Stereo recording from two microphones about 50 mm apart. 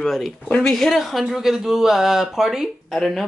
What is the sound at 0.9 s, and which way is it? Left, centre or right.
Speech, centre.